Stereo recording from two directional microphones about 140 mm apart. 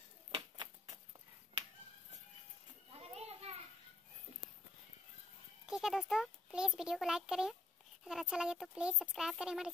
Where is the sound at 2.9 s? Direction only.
45° right (ahead or behind).